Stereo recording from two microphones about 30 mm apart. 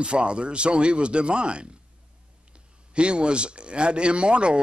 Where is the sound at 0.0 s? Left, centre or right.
Right.